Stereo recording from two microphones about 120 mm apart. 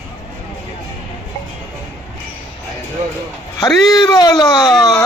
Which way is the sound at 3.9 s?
35° left (ahead or behind).